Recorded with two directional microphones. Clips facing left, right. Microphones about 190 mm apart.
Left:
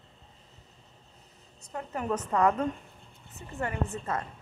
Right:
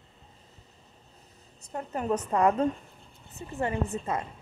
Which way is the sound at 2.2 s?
25° right (ahead or behind).